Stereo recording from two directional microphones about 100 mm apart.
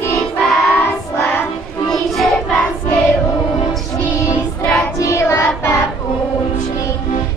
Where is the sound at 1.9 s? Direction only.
5° left (ahead or behind).